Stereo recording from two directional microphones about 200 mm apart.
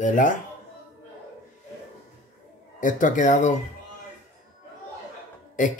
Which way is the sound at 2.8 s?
40° left (ahead or behind).